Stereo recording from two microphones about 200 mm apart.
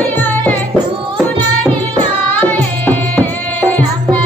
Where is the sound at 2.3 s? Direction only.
10° left (ahead or behind).